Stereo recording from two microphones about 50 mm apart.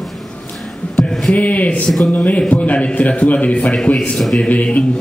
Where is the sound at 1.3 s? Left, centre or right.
Left.